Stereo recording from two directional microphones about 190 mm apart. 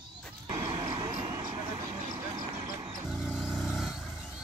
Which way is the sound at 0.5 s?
15° right (ahead or behind).